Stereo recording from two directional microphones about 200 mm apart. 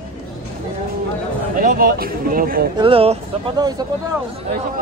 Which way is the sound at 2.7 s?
25° right (ahead or behind).